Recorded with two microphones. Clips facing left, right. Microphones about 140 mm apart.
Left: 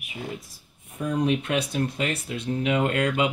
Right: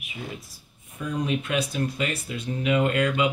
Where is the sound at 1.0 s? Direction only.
60° left (ahead or behind).